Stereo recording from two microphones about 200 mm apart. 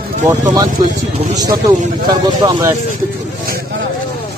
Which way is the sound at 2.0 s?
20° right (ahead or behind).